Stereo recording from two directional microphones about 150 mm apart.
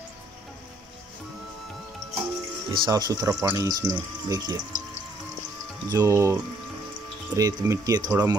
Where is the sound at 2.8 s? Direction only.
25° right (ahead or behind).